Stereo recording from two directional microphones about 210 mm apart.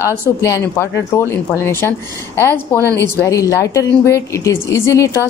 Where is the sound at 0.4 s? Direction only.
15° left (ahead or behind).